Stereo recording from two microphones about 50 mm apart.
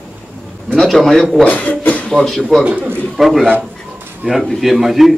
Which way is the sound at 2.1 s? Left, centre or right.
Centre.